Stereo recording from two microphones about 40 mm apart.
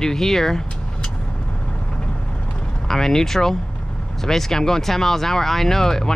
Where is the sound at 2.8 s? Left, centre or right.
Centre.